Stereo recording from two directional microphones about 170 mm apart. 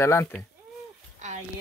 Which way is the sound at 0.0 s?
15° left (ahead or behind).